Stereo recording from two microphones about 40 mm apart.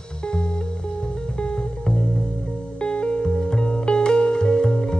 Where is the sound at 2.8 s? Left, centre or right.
Left.